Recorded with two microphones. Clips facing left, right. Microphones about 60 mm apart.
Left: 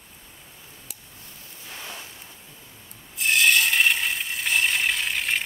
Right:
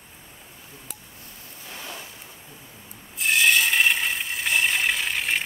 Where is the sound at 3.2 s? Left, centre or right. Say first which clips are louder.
Even; centre.